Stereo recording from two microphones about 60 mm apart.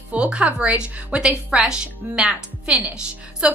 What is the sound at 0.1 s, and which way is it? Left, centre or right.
A woman's voice, centre.